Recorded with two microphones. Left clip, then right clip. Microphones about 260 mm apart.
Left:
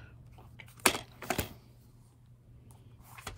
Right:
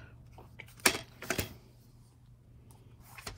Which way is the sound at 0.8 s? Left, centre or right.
Left.